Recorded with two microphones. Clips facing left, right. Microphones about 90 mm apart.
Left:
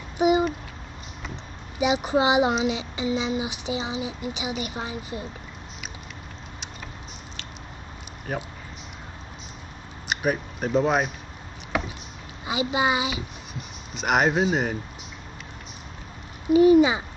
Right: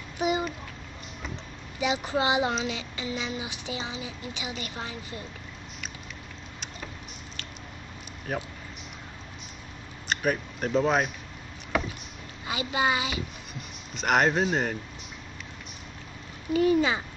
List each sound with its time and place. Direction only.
0.2 s a sound: 20° left (ahead or behind)
1.8 s speech: 20° left (ahead or behind)
7.4 s squish: centre (ahead or behind)
8.3 s speech: centre (ahead or behind)
10.0 s speech: 5° left (ahead or behind)
12.4 s speech: 20° left (ahead or behind)
13.5 s speech: centre (ahead or behind)
16.4 s a child's voice: 15° left (ahead or behind)